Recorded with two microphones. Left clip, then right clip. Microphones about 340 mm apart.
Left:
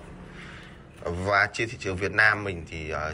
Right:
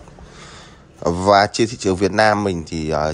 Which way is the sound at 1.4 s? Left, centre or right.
Centre.